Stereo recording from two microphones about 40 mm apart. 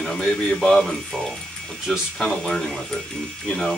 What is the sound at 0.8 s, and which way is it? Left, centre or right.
Speech, centre.